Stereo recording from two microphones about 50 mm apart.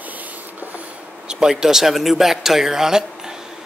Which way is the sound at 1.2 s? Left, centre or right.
Centre.